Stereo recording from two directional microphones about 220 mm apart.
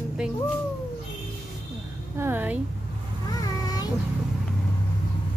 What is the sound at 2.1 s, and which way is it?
Speech, 10° right (ahead or behind).